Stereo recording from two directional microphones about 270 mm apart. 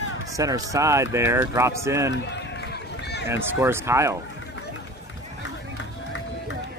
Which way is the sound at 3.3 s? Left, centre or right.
Centre.